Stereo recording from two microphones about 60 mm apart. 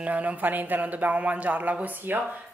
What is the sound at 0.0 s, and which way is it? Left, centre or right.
Speech, right.